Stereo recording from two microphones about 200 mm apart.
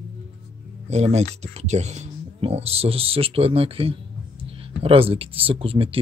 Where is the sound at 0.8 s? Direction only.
35° right (ahead or behind).